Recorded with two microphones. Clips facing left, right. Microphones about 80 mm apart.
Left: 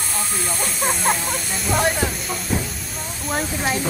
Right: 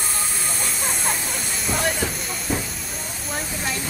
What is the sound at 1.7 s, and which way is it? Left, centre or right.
Speech, centre.